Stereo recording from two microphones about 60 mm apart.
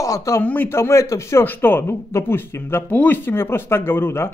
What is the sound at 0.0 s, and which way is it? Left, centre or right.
Speech, left.